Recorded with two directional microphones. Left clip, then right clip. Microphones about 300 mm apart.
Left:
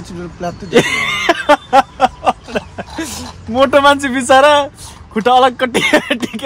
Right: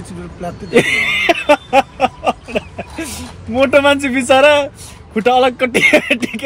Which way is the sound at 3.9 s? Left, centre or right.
Left.